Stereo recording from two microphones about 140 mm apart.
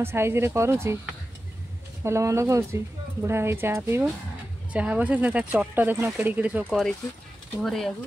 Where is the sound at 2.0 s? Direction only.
20° right (ahead or behind).